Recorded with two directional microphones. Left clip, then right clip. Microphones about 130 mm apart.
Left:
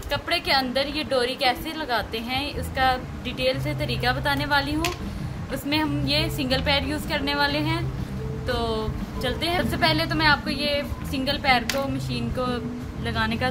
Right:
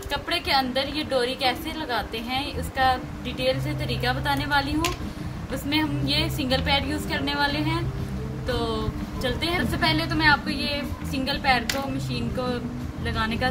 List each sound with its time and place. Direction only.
0.1 s a woman's voice: 50° left (ahead or behind)